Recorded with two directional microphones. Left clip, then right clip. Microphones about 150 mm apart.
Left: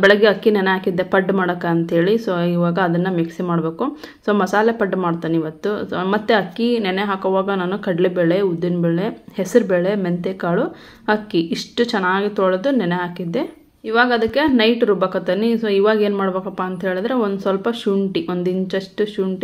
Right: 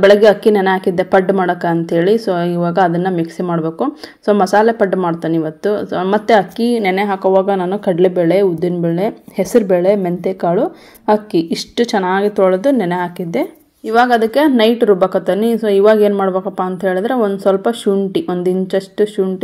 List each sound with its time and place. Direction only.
0.0 s a woman's voice: 30° right (ahead or behind)